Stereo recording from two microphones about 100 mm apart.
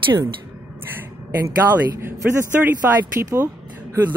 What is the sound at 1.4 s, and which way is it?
Speech, 25° right (ahead or behind).